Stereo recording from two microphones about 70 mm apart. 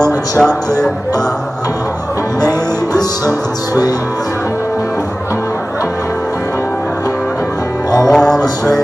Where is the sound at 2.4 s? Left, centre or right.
Left.